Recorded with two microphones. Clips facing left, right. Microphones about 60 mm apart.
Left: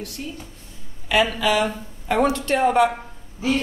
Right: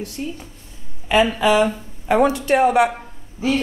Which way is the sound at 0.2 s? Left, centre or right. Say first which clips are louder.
Right 4 dB; right.